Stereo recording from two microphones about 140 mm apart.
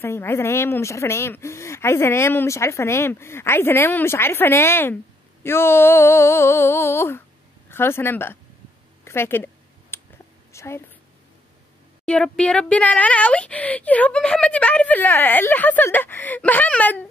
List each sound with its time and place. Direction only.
0.0 s speech: 20° left (ahead or behind)
9.0 s a sound: 15° left (ahead or behind)
12.1 s speech: 10° left (ahead or behind)